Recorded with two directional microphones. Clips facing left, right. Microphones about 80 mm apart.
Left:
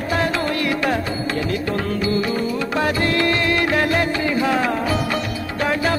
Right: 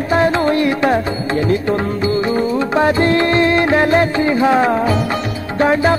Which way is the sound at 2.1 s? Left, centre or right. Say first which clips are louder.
Right 5 dB; right.